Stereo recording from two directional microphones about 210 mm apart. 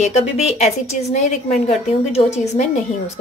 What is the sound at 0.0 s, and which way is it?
Speech, 30° left (ahead or behind).